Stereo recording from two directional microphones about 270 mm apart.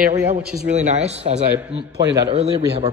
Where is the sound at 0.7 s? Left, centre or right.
Right.